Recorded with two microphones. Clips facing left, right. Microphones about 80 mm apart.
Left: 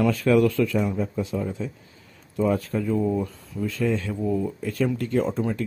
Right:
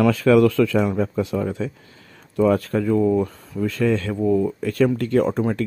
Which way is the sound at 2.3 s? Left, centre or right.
Right.